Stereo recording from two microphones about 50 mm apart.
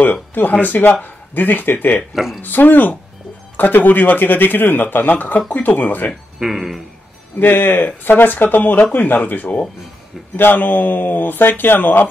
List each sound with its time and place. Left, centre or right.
0.0 s a man's voice: left
6.4 s speech: centre
7.3 s a man's voice: left